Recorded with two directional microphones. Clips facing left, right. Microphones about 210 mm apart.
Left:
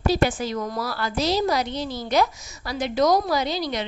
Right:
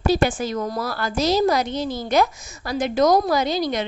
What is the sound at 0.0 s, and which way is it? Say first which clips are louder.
A woman's voice: right 2 dB; 50° right (ahead or behind).